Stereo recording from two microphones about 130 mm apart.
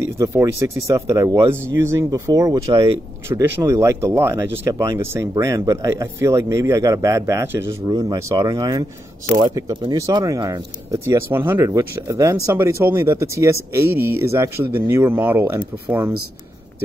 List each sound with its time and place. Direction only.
0.2 s speech: 20° right (ahead or behind)